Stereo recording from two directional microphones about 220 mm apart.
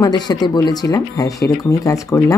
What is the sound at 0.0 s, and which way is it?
Speech, 20° left (ahead or behind).